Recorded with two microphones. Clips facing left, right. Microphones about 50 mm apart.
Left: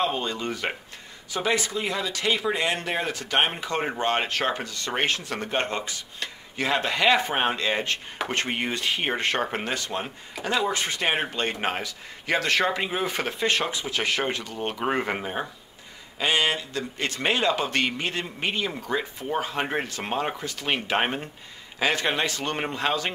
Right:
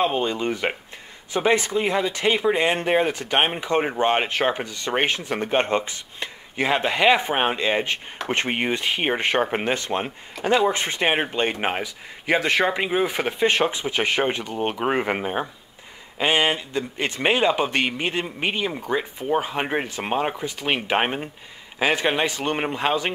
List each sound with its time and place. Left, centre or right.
0.0 s speech: right